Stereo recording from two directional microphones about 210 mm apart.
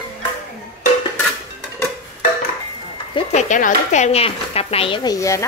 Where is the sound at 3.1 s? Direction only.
35° left (ahead or behind).